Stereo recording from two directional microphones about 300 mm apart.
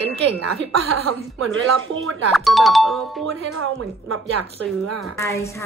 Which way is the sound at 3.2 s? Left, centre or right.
Right.